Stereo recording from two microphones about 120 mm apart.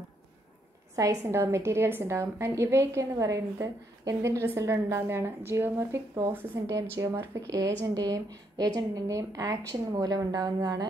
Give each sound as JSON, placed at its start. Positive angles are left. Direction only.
{"t": 0.9, "sound": "a woman's voice", "side_deg": -30}